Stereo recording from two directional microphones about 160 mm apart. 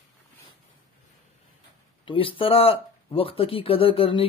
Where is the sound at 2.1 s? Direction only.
35° left (ahead or behind).